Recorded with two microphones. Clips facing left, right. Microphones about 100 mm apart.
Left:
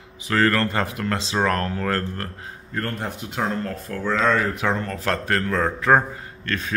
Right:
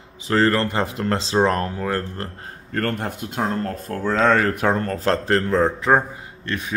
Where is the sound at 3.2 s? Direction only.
45° right (ahead or behind).